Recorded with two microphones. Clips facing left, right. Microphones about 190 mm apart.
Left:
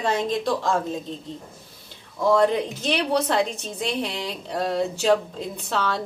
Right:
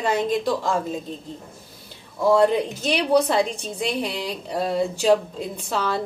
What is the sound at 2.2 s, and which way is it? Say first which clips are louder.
A woman's voice: right 2 dB; 5° right (ahead or behind).